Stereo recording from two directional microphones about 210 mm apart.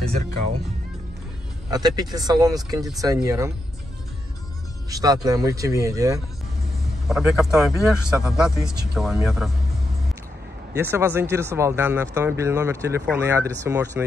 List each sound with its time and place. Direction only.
1.7 s speech: 20° right (ahead or behind)
4.8 s speech: 15° right (ahead or behind)
7.1 s speech: centre (ahead or behind)
10.8 s speech: 10° right (ahead or behind)